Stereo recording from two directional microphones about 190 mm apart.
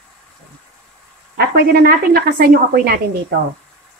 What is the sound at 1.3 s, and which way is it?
A woman's voice, 55° right (ahead or behind).